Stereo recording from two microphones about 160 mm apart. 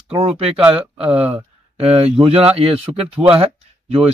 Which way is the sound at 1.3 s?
40° right (ahead or behind).